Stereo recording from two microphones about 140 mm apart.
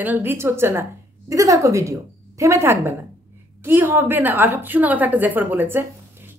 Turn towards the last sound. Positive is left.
turn(degrees=-15)  # may be behind; listen again after turning